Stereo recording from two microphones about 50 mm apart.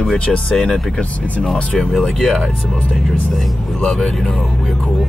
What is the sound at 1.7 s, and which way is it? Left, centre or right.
Speech, centre.